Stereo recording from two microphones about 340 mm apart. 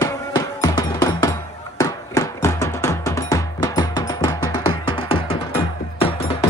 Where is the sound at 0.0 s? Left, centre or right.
Centre.